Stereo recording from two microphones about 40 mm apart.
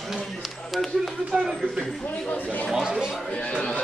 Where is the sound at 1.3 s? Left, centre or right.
Centre.